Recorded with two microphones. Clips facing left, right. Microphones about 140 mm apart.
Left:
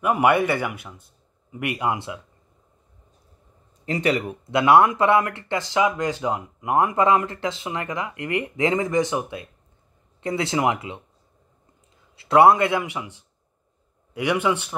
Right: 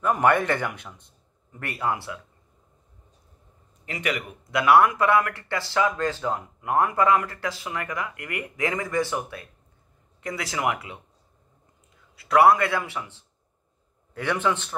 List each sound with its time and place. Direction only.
0.0 s speech: 10° left (ahead or behind)
3.8 s speech: 30° left (ahead or behind)
12.2 s speech: 25° left (ahead or behind)